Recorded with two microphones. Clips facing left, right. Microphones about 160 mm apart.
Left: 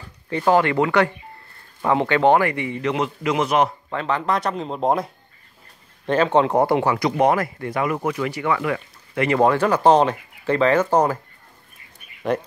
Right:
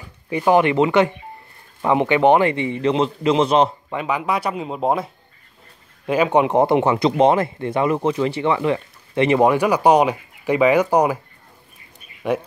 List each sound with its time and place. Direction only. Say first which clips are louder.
0.3 s speech: right 2 dB; 15° right (ahead or behind)
3.9 s speech: even; 10° right (ahead or behind)
12.3 s speech: right 1 dB; 5° right (ahead or behind)